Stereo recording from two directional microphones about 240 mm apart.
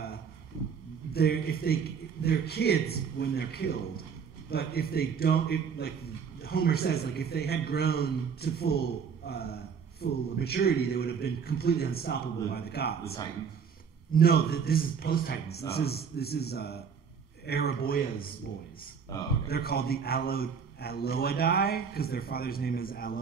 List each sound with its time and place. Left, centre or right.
1.1 s a man's voice: left
14.1 s a man's voice: left
19.1 s a man's voice: centre
19.4 s a man's voice: left